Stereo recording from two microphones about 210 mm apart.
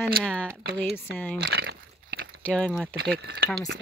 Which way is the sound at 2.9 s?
50° right (ahead or behind).